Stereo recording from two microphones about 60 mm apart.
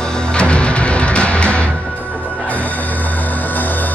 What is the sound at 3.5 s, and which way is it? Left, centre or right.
Music, left.